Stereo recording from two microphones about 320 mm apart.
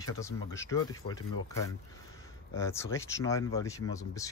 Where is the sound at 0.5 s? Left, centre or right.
Centre.